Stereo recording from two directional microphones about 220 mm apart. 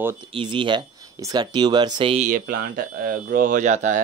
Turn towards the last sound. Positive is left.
turn(degrees=-35)  # may be behind; listen again after turning